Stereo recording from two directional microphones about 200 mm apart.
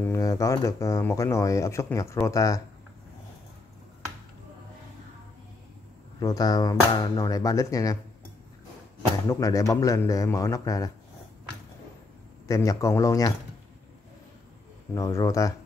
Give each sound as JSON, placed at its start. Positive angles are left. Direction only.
{"t": 0.0, "sound": "speech", "side_deg": 15}
{"t": 6.1, "sound": "speech", "side_deg": 20}
{"t": 9.3, "sound": "speech", "side_deg": 15}
{"t": 12.4, "sound": "speech", "side_deg": 15}
{"t": 15.0, "sound": "speech", "side_deg": 15}